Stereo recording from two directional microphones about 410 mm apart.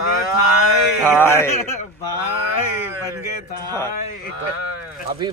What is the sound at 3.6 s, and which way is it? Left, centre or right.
Speech, centre.